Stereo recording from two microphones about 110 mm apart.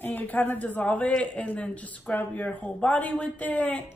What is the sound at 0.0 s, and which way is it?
A woman's voice, 15° left (ahead or behind).